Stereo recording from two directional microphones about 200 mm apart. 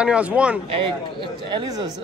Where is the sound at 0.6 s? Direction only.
25° right (ahead or behind).